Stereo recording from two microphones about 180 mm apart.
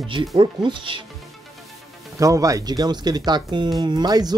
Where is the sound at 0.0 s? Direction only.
30° right (ahead or behind).